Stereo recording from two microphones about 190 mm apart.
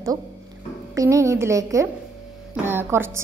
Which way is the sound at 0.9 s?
15° right (ahead or behind).